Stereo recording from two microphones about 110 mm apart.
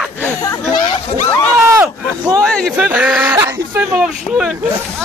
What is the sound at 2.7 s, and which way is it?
Speech, 10° right (ahead or behind).